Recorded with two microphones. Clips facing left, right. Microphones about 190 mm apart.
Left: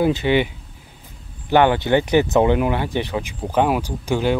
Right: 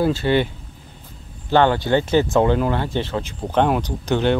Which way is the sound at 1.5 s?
15° left (ahead or behind).